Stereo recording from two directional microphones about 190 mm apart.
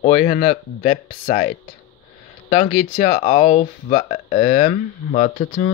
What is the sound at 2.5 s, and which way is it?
Speech, 45° left (ahead or behind).